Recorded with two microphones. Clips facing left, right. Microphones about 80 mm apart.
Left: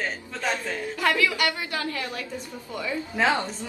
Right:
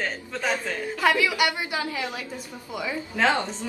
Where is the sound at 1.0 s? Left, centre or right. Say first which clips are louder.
Right 2 dB; centre.